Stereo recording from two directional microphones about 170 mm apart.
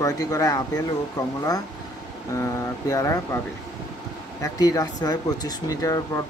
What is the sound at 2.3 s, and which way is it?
Speech, 20° left (ahead or behind).